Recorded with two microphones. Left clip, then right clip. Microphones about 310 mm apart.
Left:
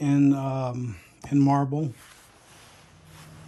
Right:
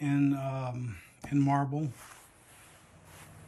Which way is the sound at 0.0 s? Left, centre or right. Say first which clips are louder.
Left 7 dB; centre.